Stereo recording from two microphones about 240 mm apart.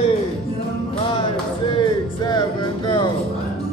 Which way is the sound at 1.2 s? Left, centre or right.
Centre.